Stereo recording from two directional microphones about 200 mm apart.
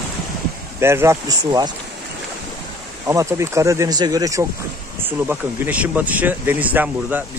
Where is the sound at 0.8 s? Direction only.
10° right (ahead or behind).